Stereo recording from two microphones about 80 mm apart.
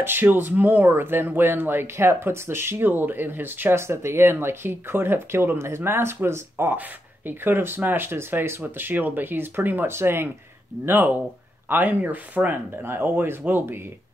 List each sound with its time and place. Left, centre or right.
0.0 s speech: right